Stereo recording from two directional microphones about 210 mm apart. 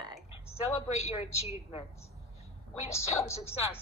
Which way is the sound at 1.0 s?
30° left (ahead or behind).